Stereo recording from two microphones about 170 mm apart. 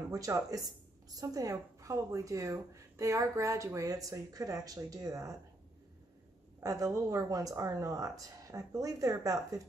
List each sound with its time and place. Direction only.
0.1 s a woman's voice: 20° right (ahead or behind)
6.6 s a woman's voice: 20° right (ahead or behind)